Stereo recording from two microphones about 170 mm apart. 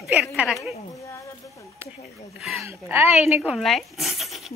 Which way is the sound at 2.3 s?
Centre (ahead or behind).